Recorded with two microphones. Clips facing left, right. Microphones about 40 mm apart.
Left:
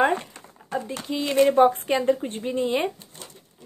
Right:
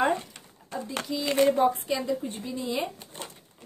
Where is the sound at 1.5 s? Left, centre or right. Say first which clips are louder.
Left 5 dB; left.